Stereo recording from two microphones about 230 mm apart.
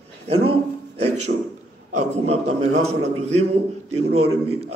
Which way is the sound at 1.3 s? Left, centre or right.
Right.